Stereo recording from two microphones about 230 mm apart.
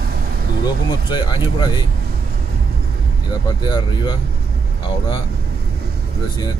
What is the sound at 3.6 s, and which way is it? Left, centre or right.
Speech, centre.